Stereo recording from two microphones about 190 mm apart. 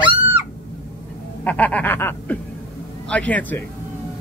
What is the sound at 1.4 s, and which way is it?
Speech, 10° left (ahead or behind).